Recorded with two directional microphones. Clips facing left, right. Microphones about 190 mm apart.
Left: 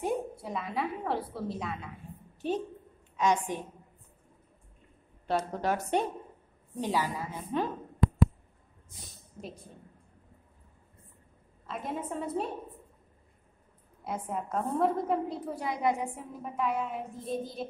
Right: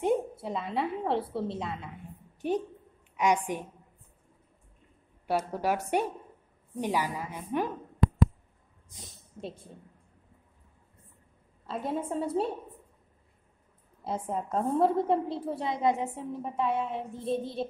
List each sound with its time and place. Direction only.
0.0 s a woman's voice: 25° right (ahead or behind)
3.2 s a woman's voice: 15° right (ahead or behind)
5.2 s a woman's voice: 10° right (ahead or behind)
8.0 s a sound: 5° left (ahead or behind)
8.9 s speech: 25° right (ahead or behind)
11.6 s a woman's voice: 30° right (ahead or behind)
14.0 s a woman's voice: 30° right (ahead or behind)